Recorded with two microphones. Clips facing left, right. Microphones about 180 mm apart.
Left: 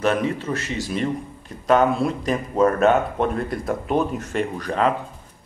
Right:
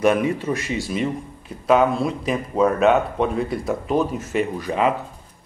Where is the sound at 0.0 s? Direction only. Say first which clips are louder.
Right 3 dB; 10° right (ahead or behind).